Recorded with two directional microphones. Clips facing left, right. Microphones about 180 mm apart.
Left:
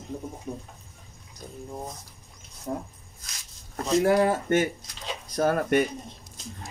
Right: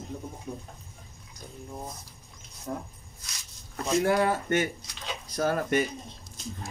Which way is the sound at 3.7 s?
40° left (ahead or behind).